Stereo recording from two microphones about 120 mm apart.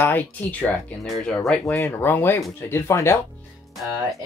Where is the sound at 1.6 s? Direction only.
25° left (ahead or behind).